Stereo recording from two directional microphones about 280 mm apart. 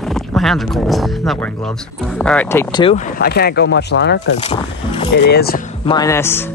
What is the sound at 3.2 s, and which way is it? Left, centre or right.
Speech, left.